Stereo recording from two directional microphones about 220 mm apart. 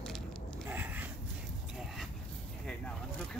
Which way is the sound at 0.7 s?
10° right (ahead or behind).